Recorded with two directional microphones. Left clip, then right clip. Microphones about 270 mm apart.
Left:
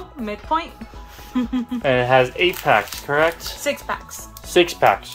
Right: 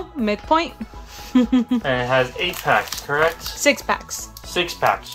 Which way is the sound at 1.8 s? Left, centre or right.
Left.